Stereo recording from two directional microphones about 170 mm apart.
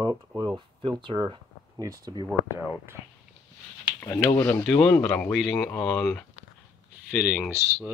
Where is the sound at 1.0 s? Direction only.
25° right (ahead or behind).